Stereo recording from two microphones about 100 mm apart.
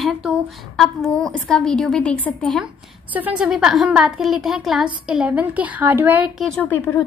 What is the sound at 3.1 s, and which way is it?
A woman's voice, 15° right (ahead or behind).